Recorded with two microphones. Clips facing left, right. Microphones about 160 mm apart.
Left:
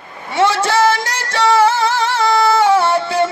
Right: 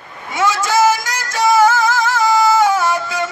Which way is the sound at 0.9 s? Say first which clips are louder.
Left 2 dB; 30° left (ahead or behind).